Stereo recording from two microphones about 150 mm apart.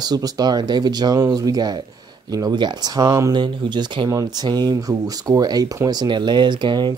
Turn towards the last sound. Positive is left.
turn(degrees=-30)  # may be behind; listen again after turning